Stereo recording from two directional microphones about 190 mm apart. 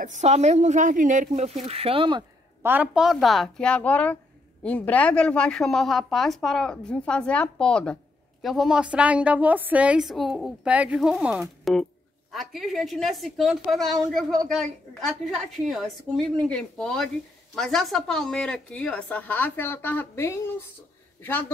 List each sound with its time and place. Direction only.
0.0 s speech: 40° right (ahead or behind)
2.6 s a woman's voice: 10° right (ahead or behind); by 21.5 s 10° left (ahead or behind)